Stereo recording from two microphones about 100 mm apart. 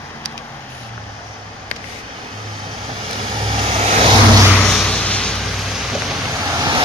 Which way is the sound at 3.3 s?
60° right (ahead or behind).